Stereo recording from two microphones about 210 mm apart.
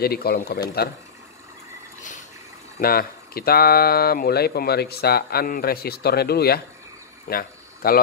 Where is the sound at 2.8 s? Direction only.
45° left (ahead or behind).